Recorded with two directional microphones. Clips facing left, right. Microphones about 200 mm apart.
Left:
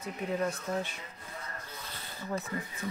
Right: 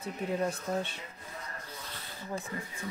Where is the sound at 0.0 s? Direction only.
30° right (ahead or behind).